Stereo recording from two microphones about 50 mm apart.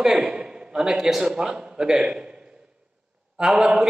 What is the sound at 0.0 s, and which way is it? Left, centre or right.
A man's voice, centre.